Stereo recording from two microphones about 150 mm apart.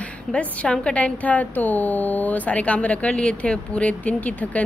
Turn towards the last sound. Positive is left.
turn(degrees=10)  # may be behind; listen again after turning